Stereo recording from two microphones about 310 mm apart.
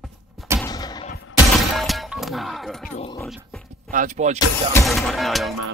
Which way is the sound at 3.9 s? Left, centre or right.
Right.